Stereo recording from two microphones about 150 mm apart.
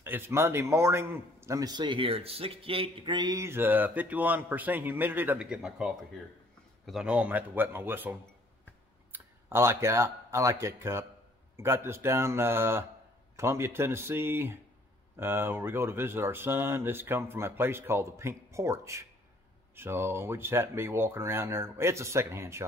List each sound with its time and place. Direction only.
0.0 s a man's voice: 15° right (ahead or behind)